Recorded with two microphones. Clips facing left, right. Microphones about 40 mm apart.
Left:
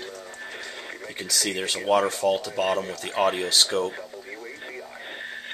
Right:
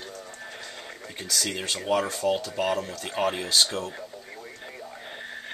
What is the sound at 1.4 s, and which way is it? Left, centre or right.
Speech, centre.